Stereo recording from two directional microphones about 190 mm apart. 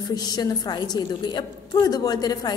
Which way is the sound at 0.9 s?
20° left (ahead or behind).